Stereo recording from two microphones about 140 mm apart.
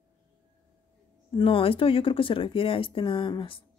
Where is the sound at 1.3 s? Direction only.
40° left (ahead or behind).